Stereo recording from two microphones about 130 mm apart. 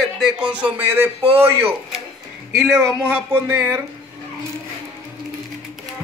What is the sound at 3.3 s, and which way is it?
Speech, 15° right (ahead or behind).